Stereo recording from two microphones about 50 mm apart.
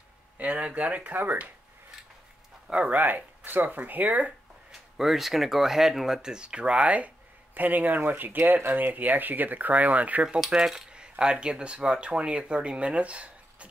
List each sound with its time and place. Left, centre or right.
0.4 s speech: right
2.9 s speech: right
4.9 s speech: centre; by 7.1 s right
7.5 s speech: right
10.4 s speech: centre; by 13.7 s right